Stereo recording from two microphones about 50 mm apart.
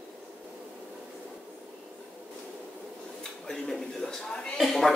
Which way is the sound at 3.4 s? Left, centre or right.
Centre.